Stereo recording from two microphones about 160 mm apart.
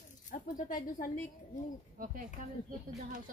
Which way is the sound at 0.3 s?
60° left (ahead or behind).